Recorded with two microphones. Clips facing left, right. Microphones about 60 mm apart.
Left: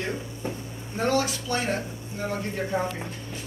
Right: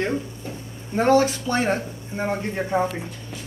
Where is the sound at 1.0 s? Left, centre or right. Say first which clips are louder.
Right 7 dB; right.